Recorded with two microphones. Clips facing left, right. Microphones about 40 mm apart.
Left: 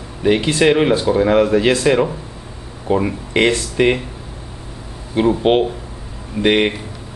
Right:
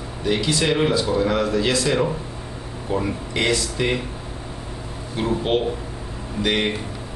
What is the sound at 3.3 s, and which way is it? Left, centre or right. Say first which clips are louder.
Speech: left 7 dB; left.